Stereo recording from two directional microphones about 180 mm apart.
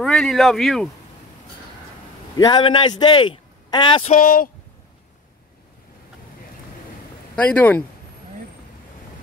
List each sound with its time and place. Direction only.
0.0 s speech: centre (ahead or behind)
2.3 s a man's voice: 20° left (ahead or behind)
4.0 s speech: 50° left (ahead or behind)
7.3 s speech: 10° left (ahead or behind)